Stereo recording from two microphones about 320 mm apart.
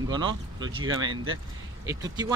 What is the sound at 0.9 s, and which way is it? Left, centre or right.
Speech, right.